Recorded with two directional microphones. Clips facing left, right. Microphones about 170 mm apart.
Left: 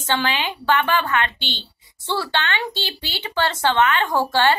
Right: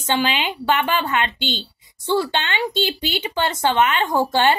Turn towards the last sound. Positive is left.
turn(degrees=-20)  # may be behind; listen again after turning